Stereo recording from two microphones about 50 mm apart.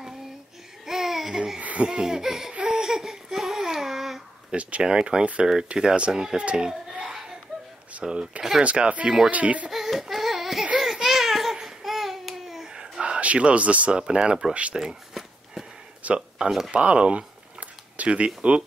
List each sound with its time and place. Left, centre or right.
0.8 s babbling: centre
1.6 s laughter: right
1.9 s laughter: centre
2.8 s a sound: centre
4.5 s a child's voice: right
8.0 s laughter: centre
8.6 s speech: right
9.7 s baby cry: centre
10.8 s a sound: centre
11.5 s baby cry: centre
13.0 s speech: right
16.0 s a sound: right
16.4 s laughter: centre
16.7 s speech: right